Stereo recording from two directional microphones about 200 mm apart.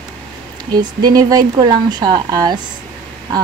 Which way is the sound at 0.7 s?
20° right (ahead or behind).